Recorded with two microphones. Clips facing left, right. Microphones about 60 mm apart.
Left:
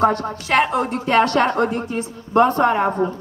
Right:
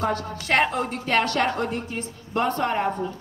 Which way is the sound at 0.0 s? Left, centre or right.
Left.